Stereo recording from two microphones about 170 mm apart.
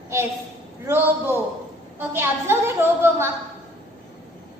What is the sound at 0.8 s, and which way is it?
A woman's voice, 15° right (ahead or behind).